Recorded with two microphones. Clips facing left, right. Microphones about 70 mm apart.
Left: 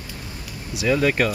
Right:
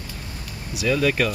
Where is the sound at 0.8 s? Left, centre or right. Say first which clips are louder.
Left 1 dB; left.